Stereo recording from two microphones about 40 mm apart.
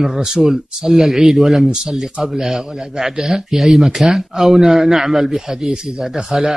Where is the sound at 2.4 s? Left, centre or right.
Centre.